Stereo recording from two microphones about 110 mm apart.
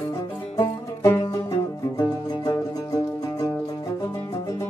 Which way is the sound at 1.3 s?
35° left (ahead or behind).